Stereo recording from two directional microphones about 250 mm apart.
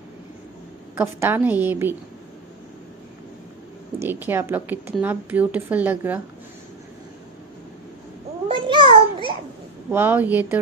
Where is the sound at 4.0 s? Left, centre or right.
Centre.